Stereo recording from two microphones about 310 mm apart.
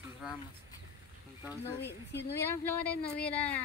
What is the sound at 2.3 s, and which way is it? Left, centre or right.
Speech, centre.